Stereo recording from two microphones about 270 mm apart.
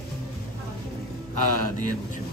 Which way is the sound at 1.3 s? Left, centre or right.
Right.